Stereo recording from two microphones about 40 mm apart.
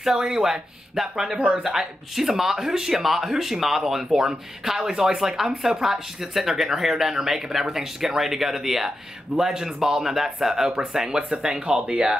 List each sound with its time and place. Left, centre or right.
0.0 s speech: centre